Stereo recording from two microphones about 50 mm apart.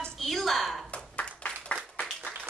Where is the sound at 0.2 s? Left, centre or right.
Centre.